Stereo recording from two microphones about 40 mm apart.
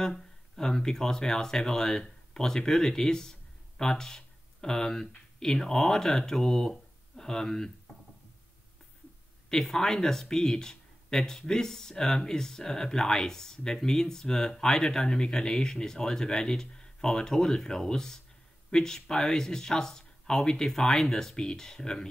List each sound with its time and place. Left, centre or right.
0.0 s speech: centre
9.5 s speech: centre
21.4 s speech: centre